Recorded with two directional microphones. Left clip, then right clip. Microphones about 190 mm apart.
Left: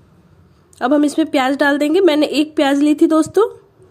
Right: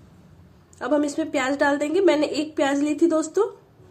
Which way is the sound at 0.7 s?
50° left (ahead or behind).